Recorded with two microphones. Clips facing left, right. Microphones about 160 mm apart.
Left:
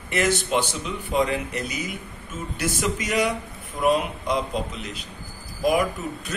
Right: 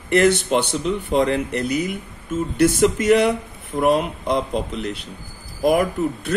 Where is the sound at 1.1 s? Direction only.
60° right (ahead or behind).